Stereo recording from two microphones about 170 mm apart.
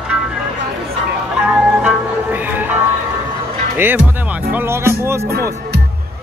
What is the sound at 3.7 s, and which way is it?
Music, 10° right (ahead or behind).